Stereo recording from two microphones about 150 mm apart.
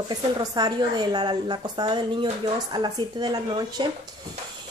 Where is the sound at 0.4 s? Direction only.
25° right (ahead or behind).